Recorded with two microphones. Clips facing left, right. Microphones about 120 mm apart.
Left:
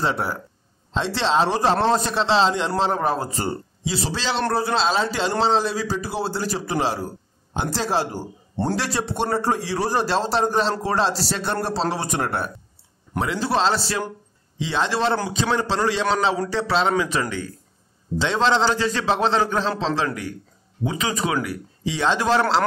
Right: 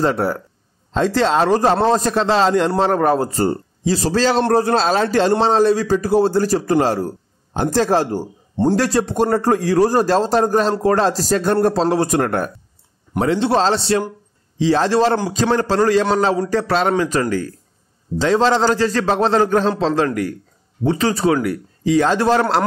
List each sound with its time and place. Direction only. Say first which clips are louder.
0.0 s speech: right 6 dB; 45° right (ahead or behind)
8.2 s a man's voice: right 7 dB; 20° right (ahead or behind)
8.7 s speech: right 8 dB; 45° right (ahead or behind)
13.2 s a man's voice: right 5 dB; 35° right (ahead or behind)